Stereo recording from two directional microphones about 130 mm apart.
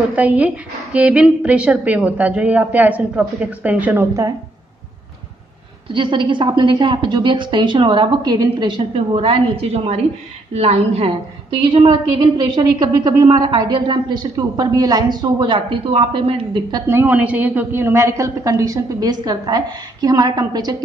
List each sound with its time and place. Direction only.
0.1 s a woman's voice: 10° right (ahead or behind)
5.9 s a woman's voice: 40° right (ahead or behind)
11.6 s a woman's voice: 35° right (ahead or behind)
16.8 s a woman's voice: 15° right (ahead or behind); by 20.7 s 30° right (ahead or behind)